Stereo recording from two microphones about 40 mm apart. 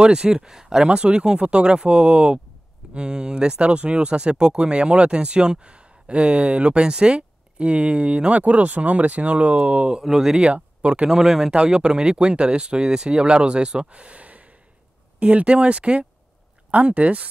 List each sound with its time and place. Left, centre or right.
0.0 s speech: centre
0.8 s speech: right
10.0 s speech: centre
10.5 s speech: right
11.1 s speech: centre
11.5 s speech: right
13.8 s a sound: right
15.1 s speech: right